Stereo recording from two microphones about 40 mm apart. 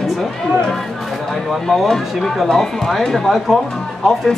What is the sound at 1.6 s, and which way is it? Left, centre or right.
Speech, centre.